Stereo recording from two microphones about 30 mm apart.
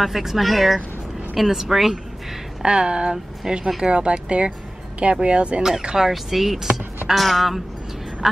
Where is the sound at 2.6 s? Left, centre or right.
Right.